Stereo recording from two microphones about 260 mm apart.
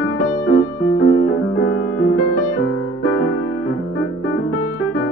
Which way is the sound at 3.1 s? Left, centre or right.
Left.